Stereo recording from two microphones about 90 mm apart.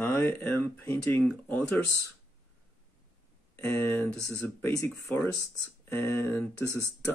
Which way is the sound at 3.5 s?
25° left (ahead or behind).